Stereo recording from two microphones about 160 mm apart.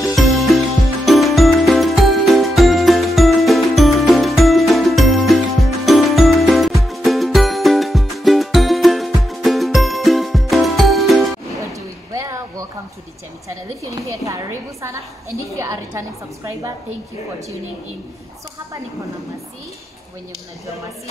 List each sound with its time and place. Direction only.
0.0 s music: centre (ahead or behind)
11.5 s vehicle: 20° right (ahead or behind)
13.9 s a sound: 20° right (ahead or behind)